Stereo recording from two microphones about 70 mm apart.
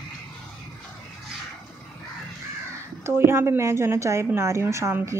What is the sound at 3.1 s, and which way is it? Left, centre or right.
A woman's voice, right.